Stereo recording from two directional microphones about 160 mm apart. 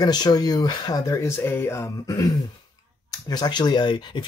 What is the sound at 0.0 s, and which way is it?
Speech, 25° left (ahead or behind).